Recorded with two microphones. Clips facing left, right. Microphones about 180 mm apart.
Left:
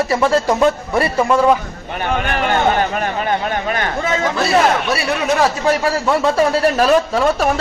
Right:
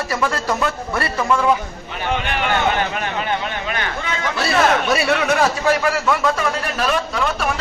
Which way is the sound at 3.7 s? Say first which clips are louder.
Left 7 dB; 40° left (ahead or behind).